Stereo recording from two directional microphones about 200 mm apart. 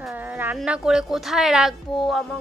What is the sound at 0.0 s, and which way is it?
Speech, 10° right (ahead or behind).